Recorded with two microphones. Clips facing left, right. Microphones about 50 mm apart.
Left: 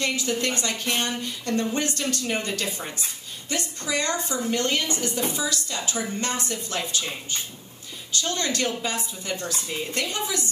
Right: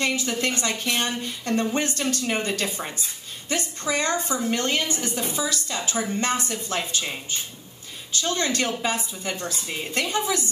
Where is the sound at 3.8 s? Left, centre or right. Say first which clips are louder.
Right 3 dB; right.